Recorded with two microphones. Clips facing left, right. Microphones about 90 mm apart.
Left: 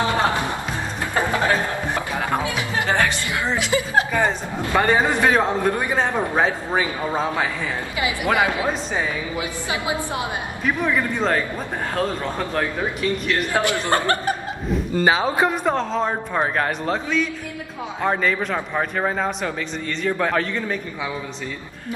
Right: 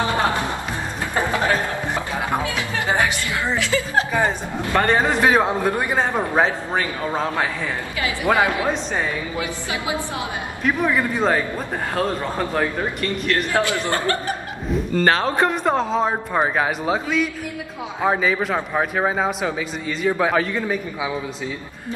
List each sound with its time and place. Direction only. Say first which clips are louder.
0.0 s music: even; 20° left (ahead or behind)
1.2 s music: even; 15° right (ahead or behind)
2.3 s music: left 1 dB; 20° left (ahead or behind)
2.9 s music: right 1 dB; 15° right (ahead or behind)
3.5 s chuckle: left 1 dB; 20° left (ahead or behind)
4.7 s a man's voice: even; 5° left (ahead or behind)
5.2 s a man's voice: right 1 dB; 10° right (ahead or behind)
6.4 s a man's voice: even; 10° left (ahead or behind)
10.6 s a man's voice: right 2 dB; 5° right (ahead or behind)
13.5 s speech: even; 20° left (ahead or behind)
14.7 s a man's voice: right 1 dB; 5° left (ahead or behind)